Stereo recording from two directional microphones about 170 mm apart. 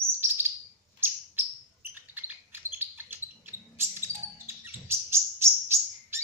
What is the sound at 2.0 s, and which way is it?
Bird, 10° right (ahead or behind).